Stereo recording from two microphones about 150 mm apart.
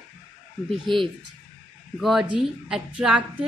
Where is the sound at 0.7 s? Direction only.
35° right (ahead or behind).